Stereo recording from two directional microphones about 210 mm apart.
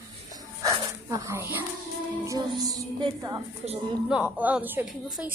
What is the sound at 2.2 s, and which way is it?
A woman's voice, 15° right (ahead or behind).